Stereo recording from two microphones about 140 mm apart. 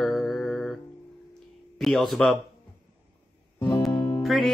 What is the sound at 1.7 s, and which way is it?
Mantra, centre (ahead or behind).